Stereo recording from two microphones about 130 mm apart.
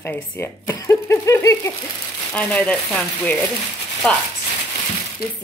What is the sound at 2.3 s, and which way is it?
Speech, 10° left (ahead or behind).